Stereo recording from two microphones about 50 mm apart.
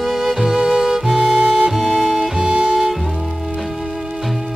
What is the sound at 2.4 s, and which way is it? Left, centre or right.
Music, centre.